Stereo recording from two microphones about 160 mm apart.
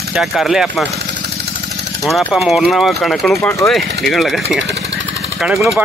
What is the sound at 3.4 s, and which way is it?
Speech, 15° left (ahead or behind).